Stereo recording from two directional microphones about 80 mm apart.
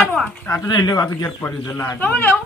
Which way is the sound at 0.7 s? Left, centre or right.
Left.